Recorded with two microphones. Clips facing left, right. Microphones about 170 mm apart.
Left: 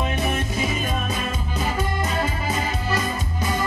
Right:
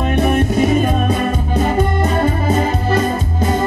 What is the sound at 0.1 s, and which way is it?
Music, 60° right (ahead or behind).